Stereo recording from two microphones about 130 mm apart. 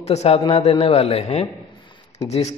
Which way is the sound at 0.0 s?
55° left (ahead or behind).